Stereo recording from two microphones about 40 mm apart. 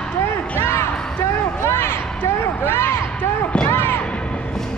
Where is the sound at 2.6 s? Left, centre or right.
Left.